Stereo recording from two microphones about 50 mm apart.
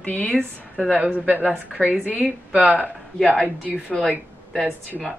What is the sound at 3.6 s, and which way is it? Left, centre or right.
Speech, left.